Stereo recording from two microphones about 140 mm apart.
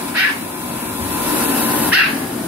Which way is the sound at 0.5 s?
15° right (ahead or behind).